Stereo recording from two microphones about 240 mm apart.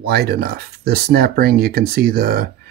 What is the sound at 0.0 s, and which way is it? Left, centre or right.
Speech, right.